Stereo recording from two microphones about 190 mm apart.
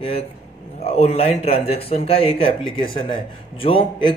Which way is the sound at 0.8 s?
35° left (ahead or behind).